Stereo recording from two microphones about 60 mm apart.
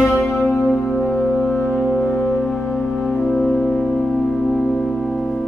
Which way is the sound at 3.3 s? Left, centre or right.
Centre.